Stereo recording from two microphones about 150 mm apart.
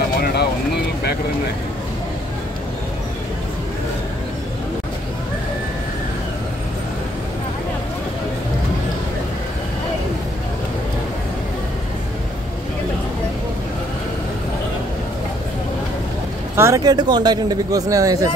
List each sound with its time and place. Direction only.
0.2 s vehicle: 90° left
16.5 s speech: 20° right (ahead or behind)